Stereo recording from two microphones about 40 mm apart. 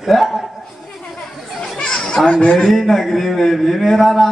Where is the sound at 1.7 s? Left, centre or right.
Centre.